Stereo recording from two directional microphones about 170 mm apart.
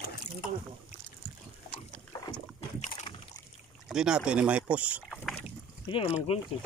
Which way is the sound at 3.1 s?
30° left (ahead or behind).